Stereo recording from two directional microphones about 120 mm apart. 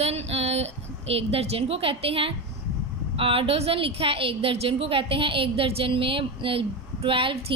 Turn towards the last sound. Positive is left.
turn(degrees=-45)  # may be behind; listen again after turning